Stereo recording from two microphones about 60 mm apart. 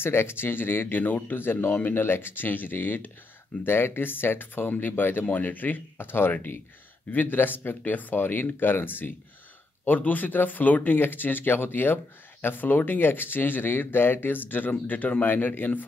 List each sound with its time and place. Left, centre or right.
0.0 s speech: left